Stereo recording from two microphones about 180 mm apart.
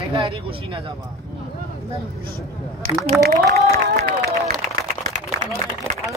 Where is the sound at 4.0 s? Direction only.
55° right (ahead or behind).